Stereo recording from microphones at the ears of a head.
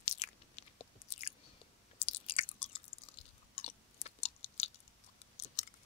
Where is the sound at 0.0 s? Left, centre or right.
Left.